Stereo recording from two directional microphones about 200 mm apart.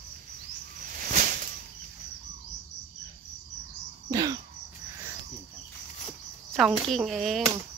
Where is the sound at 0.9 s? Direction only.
45° right (ahead or behind).